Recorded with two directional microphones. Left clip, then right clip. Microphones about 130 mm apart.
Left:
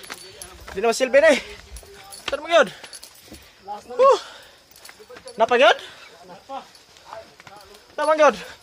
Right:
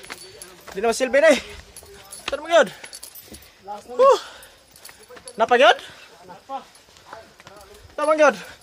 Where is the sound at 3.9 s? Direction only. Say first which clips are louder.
Even; 20° right (ahead or behind).